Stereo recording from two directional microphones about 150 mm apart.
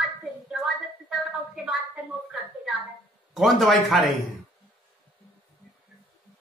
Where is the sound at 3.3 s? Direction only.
Centre (ahead or behind).